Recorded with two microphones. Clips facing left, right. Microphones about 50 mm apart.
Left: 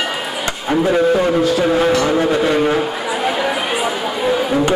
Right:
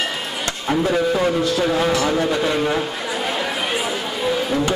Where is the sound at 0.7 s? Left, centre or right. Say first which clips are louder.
Left 5 dB; centre.